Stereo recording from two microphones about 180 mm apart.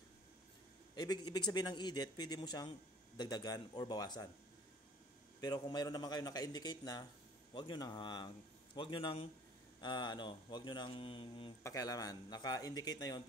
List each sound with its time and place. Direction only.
0.9 s a man's voice: 20° left (ahead or behind)
5.4 s a man's voice: 20° left (ahead or behind)
11.6 s a man's voice: 20° left (ahead or behind)